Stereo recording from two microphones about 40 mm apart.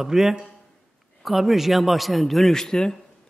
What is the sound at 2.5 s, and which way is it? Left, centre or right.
Speech, centre.